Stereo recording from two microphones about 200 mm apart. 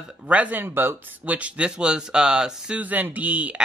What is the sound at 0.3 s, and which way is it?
Speech, 10° right (ahead or behind).